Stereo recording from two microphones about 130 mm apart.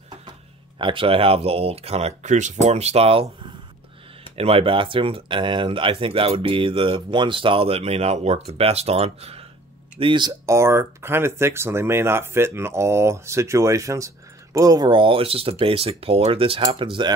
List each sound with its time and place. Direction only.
0.7 s speech: 40° right (ahead or behind)
4.4 s speech: 45° right (ahead or behind)
9.9 s speech: 40° right (ahead or behind)
10.4 s speech: 20° right (ahead or behind); by 17.1 s 40° right (ahead or behind)